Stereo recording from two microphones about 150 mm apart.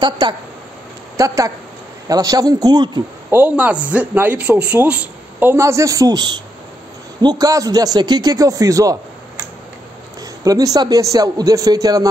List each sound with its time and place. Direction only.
0.0 s a man's voice: 30° right (ahead or behind)
3.3 s a man's voice: 10° right (ahead or behind)
10.4 s a man's voice: 25° right (ahead or behind)